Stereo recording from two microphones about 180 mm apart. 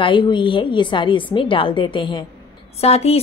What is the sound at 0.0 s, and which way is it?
A woman's voice, 25° left (ahead or behind).